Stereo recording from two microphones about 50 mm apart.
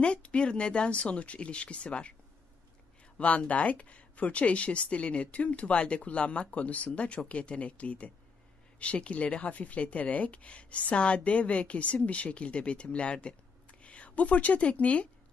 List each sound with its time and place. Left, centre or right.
0.0 s speech: left
3.2 s speech: left